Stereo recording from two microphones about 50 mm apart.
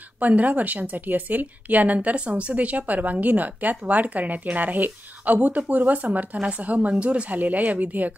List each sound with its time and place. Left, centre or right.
0.2 s a woman's voice: right